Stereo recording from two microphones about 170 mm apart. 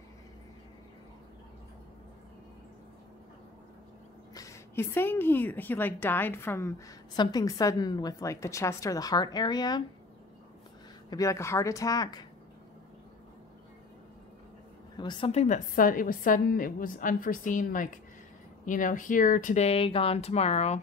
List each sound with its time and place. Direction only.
4.3 s a woman's voice: 20° left (ahead or behind)
11.1 s a woman's voice: 20° left (ahead or behind)
15.0 s a woman's voice: 30° left (ahead or behind)